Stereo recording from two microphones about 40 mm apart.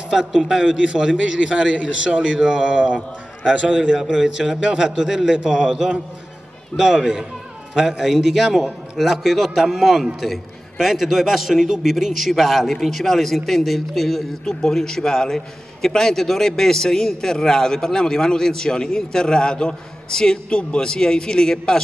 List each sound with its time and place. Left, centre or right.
0.3 s a man's voice: centre
0.6 s a man's voice: centre
6.8 s a man's voice: centre